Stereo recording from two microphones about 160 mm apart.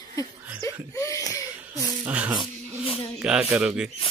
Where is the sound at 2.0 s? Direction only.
10° right (ahead or behind).